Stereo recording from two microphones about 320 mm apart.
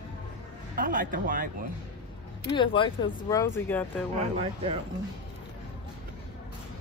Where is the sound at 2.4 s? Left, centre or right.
Centre.